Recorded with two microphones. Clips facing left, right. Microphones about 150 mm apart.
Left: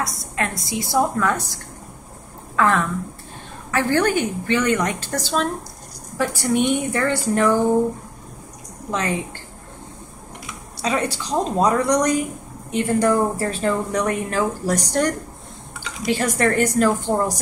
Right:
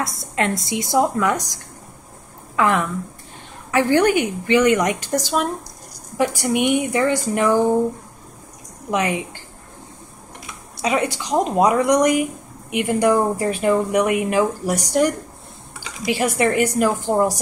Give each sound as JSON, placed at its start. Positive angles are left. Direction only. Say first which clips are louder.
{"t": 0.0, "sound": "speech", "louder": "right 3 dB", "side_deg": -25}
{"t": 8.9, "sound": "speech", "louder": "right 3 dB", "side_deg": -15}
{"t": 10.8, "sound": "speech", "louder": "right 2 dB", "side_deg": -15}